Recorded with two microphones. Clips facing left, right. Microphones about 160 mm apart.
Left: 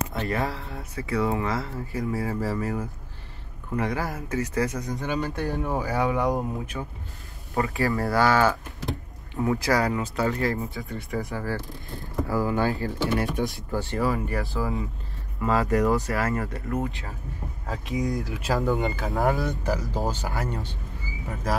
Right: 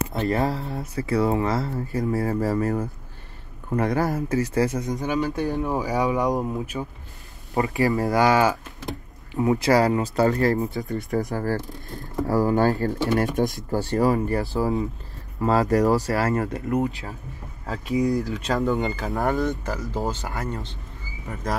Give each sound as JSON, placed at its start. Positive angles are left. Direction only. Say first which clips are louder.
{"t": 0.1, "sound": "speech", "louder": "right 5 dB", "side_deg": -25}
{"t": 5.2, "sound": "speech", "louder": "right 4 dB", "side_deg": -5}
{"t": 7.5, "sound": "speech", "louder": "right 3 dB", "side_deg": -20}
{"t": 17.6, "sound": "speech", "louder": "right 5 dB", "side_deg": 0}